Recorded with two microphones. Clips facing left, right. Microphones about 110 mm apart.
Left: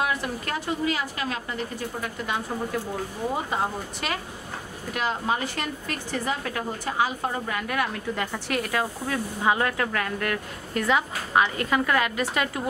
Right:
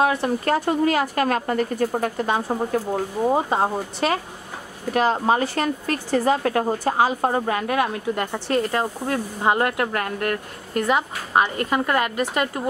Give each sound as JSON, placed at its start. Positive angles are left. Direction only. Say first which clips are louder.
{"t": 0.0, "sound": "speech", "louder": "right 7 dB", "side_deg": -35}
{"t": 0.7, "sound": "a woman's voice", "louder": "right 7 dB", "side_deg": -50}
{"t": 2.2, "sound": "speech", "louder": "right 6 dB", "side_deg": -35}
{"t": 9.1, "sound": "a woman's voice", "louder": "right 3 dB", "side_deg": -45}